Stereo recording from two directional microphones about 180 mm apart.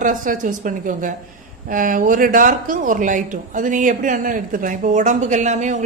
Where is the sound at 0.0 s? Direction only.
45° right (ahead or behind).